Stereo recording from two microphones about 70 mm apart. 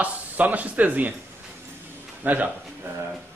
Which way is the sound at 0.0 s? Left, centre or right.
Right.